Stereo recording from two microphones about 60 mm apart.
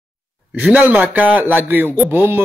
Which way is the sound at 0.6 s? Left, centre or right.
Centre.